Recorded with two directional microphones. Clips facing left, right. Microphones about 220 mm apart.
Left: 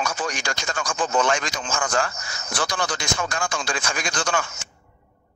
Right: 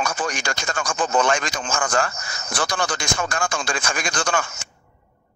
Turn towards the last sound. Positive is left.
turn(degrees=-50)  # may be behind; listen again after turning